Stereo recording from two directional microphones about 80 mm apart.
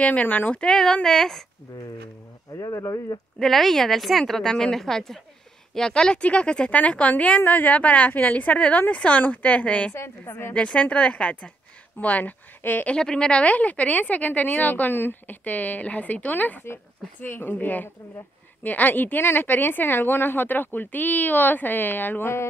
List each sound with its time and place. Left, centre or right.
0.0 s speech: centre
0.6 s a woman's voice: centre
2.6 s speech: left
3.3 s a woman's voice: centre
9.9 s a woman's voice: left
12.9 s speech: centre; by 22.5 s left